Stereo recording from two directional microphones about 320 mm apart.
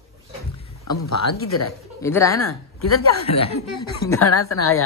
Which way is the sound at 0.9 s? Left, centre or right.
Left.